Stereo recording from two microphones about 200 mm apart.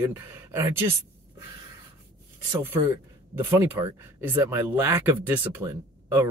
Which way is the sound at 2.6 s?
10° right (ahead or behind).